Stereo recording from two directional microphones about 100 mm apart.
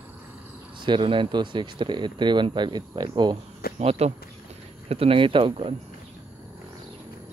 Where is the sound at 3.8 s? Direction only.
85° right; by 5.7 s 65° right (ahead or behind).